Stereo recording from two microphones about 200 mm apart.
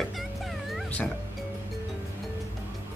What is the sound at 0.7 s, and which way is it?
Music, centre (ahead or behind).